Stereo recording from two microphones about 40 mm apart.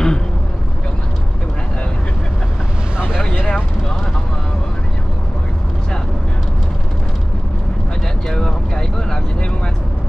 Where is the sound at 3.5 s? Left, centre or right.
Centre.